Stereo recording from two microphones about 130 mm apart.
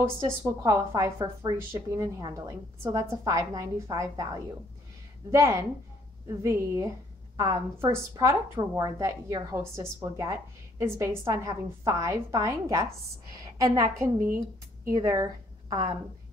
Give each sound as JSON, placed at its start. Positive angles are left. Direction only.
{"t": 0.4, "sound": "a woman's voice", "side_deg": -25}